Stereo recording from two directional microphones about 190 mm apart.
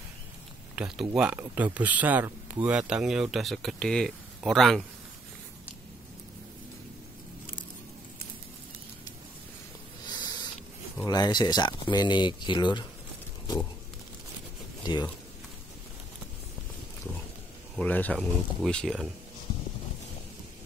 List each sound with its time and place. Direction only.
0.7 s speech: 5° right (ahead or behind)
10.0 s a sound: 20° left (ahead or behind)
11.1 s speech: 20° left (ahead or behind)
17.7 s speech: 10° left (ahead or behind)